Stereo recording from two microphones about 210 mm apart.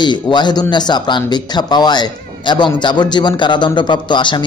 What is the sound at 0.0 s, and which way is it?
A man's voice, 20° left (ahead or behind).